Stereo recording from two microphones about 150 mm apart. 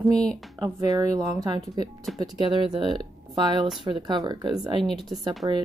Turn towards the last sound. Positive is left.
turn(degrees=-25)  # may be behind; listen again after turning